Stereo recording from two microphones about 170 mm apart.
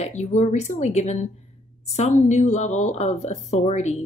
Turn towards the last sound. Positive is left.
turn(degrees=40)  # may be behind; listen again after turning